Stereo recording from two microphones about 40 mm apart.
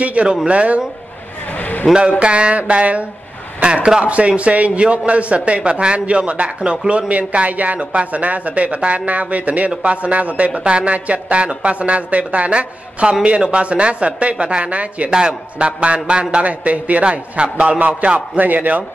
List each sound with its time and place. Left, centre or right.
0.0 s a man's voice: right
1.5 s a sound: left
2.0 s a man's voice: right
15.0 s a man's voice: right